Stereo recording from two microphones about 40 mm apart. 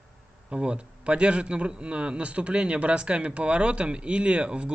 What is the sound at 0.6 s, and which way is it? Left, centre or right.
A man's voice, right.